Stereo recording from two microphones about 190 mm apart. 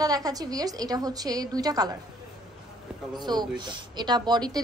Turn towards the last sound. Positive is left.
turn(degrees=-20)  # may be behind; listen again after turning